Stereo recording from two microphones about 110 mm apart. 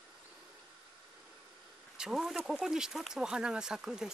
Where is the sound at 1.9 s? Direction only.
5° right (ahead or behind).